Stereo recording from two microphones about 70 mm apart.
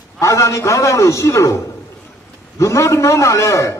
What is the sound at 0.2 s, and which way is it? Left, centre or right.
A man's voice, left.